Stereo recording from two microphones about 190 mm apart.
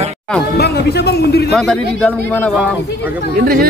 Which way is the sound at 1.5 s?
5° left (ahead or behind).